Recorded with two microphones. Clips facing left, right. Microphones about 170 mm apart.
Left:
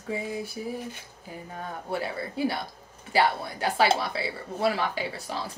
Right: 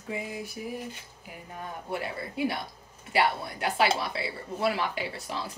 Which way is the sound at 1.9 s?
30° left (ahead or behind).